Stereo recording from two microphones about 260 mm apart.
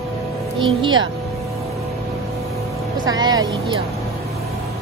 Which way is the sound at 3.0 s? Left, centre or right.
Centre.